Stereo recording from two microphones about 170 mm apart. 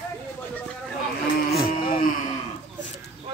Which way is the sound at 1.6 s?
30° left (ahead or behind).